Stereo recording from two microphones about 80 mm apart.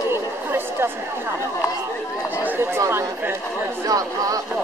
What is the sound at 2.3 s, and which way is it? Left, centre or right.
Chatter, right.